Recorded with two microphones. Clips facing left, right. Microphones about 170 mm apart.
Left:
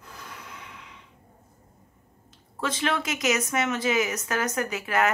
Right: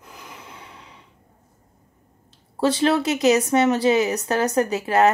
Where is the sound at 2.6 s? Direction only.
35° right (ahead or behind).